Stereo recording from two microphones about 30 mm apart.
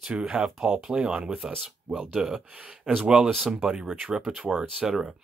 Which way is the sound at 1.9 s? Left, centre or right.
Right.